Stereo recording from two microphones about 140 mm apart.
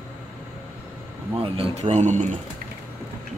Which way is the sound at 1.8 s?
55° right (ahead or behind).